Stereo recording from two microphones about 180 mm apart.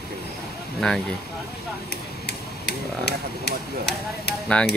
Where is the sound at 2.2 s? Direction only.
70° left (ahead or behind).